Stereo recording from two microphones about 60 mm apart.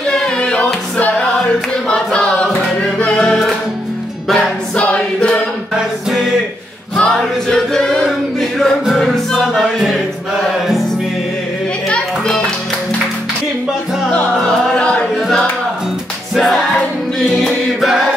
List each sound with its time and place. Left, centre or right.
0.1 s a sound: centre
1.9 s music: centre
3.3 s music: centre
4.7 s choir: left
7.0 s choir: centre
9.6 s music: centre
14.4 s music: centre
17.8 s music: centre